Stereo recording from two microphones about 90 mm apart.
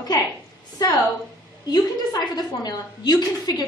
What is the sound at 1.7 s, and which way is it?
A woman's voice, 50° left (ahead or behind).